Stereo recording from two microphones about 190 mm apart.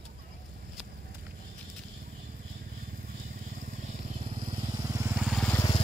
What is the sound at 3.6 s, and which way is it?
Vehicle, 45° right (ahead or behind).